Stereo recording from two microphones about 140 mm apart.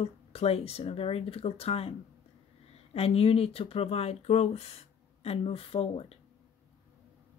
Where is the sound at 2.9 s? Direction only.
45° left (ahead or behind).